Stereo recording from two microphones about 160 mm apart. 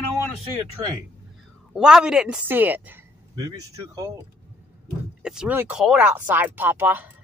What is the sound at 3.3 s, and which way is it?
Speech, 25° right (ahead or behind).